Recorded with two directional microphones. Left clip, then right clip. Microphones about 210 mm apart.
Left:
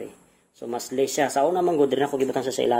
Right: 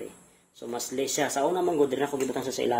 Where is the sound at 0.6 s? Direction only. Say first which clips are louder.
Left 6 dB; 45° left (ahead or behind).